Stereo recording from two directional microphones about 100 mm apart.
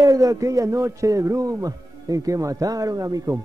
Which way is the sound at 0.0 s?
35° right (ahead or behind).